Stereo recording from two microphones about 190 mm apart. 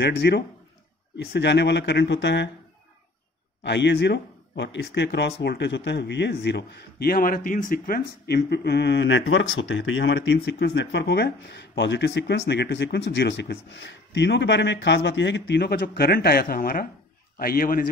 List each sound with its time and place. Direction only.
0.0 s speech: 60° left (ahead or behind)
3.6 s a man's voice: 65° left (ahead or behind); by 17.8 s 50° left (ahead or behind)